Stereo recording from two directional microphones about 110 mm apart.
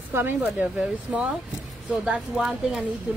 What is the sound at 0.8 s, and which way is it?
Speech, 10° right (ahead or behind).